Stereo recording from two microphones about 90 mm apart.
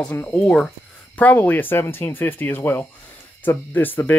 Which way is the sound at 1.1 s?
20° left (ahead or behind).